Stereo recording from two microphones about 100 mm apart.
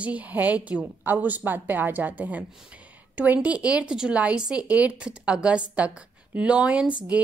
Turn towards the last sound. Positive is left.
turn(degrees=-10)  # may be behind; listen again after turning